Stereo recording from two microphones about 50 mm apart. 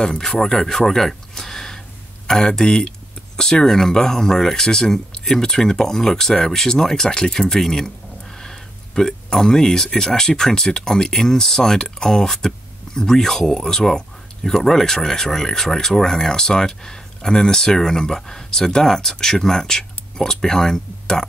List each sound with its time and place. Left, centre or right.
0.0 s speech: centre